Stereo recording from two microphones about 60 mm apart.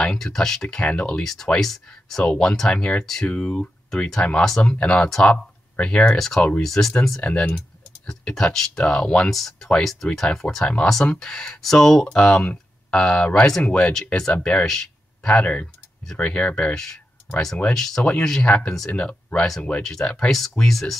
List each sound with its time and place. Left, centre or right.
0.0 s speech: centre
1.2 s speech: centre
6.1 s speech: centre
7.2 s speech: centre
8.5 s speech: centre
16.7 s speech: centre